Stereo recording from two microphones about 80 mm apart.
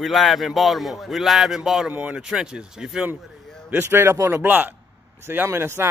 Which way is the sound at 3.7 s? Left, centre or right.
Right.